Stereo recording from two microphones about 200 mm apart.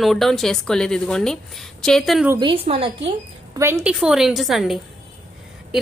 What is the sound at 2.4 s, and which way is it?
Speech, 30° right (ahead or behind).